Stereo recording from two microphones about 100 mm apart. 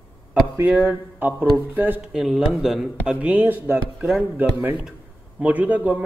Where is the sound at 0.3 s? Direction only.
15° right (ahead or behind).